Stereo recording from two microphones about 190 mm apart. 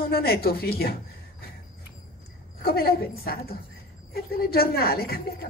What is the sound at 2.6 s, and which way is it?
Speech, 50° left (ahead or behind).